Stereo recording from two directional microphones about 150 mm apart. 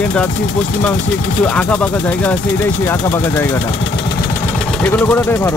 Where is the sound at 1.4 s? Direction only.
10° left (ahead or behind).